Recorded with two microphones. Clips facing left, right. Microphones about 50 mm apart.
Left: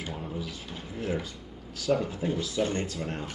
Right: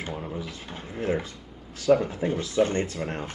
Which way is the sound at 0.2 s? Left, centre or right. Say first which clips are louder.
Right 2 dB; right.